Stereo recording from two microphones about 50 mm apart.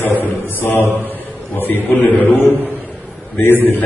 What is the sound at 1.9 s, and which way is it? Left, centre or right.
A man's voice, left.